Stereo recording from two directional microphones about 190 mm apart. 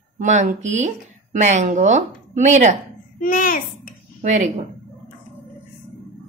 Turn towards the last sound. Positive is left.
turn(degrees=-40)  # may be behind; listen again after turning